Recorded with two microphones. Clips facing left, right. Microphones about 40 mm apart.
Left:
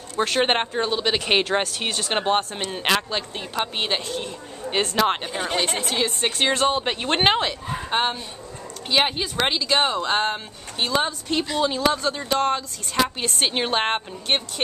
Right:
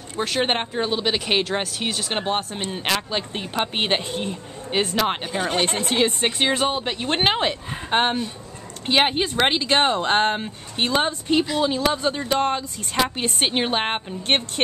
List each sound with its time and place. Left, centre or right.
0.2 s speech: centre
3.3 s speech: centre
4.6 s speech: centre
5.9 s speech: right
6.2 s speech: centre
6.8 s speech: centre
7.3 s speech: centre
11.2 s speech: centre
14.3 s speech: right